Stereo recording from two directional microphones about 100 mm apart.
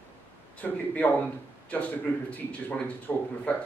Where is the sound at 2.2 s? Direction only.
15° left (ahead or behind).